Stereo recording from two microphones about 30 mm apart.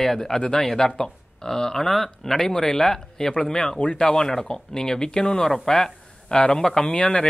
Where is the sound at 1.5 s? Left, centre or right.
Centre.